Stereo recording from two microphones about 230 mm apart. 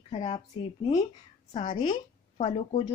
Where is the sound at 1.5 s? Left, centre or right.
Left.